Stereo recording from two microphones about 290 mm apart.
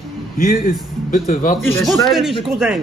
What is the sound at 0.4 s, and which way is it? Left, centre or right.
A man's voice, left.